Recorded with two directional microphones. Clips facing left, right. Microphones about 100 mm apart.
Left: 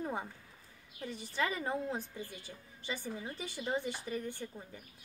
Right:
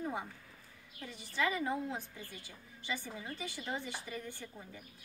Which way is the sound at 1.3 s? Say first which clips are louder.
Right 1 dB; 35° left (ahead or behind).